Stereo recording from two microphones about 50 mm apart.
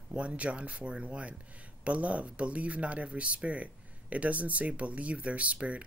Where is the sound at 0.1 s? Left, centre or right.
Right.